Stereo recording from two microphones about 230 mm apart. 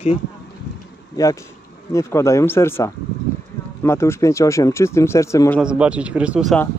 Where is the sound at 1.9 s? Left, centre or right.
Centre.